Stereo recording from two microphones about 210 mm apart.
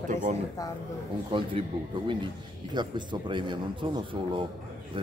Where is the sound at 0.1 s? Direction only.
35° right (ahead or behind).